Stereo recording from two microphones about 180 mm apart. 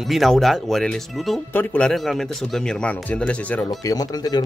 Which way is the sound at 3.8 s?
20° left (ahead or behind).